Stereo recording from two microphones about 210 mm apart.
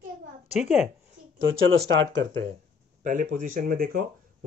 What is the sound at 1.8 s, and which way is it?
Speech, 60° right (ahead or behind).